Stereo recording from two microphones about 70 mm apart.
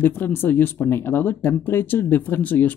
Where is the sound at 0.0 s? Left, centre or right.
Left.